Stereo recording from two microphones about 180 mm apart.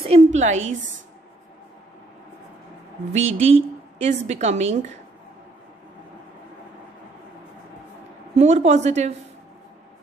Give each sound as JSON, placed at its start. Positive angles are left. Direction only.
{"t": 0.0, "sound": "a sound", "side_deg": -35}
{"t": 3.1, "sound": "a woman's voice", "side_deg": -35}
{"t": 8.4, "sound": "a woman's voice", "side_deg": -40}